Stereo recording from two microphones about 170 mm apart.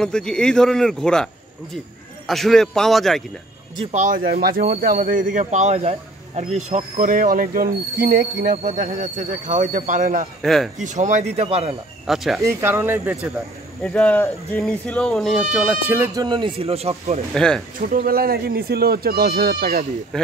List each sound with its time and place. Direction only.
0.0 s speech: 5° left (ahead or behind)
3.9 s speech: 50° right (ahead or behind)
10.4 s speech: centre (ahead or behind)
10.8 s speech: 45° right (ahead or behind)
12.1 s speech: centre (ahead or behind)
12.4 s speech: 15° right (ahead or behind)
13.8 s speech: 5° left (ahead or behind); by 16.3 s 10° right (ahead or behind)
16.3 s speech: 30° right (ahead or behind)
17.3 s speech: 5° left (ahead or behind)
17.7 s speech: 55° right (ahead or behind)